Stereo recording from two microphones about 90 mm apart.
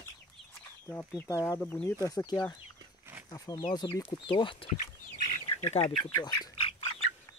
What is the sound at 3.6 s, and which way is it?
Speech, 65° left (ahead or behind).